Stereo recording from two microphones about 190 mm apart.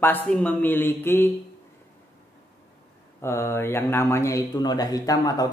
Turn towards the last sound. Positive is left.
turn(degrees=20)  # may be behind; listen again after turning